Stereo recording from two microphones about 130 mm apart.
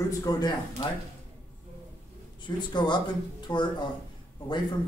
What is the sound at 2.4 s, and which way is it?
Speech, 35° left (ahead or behind).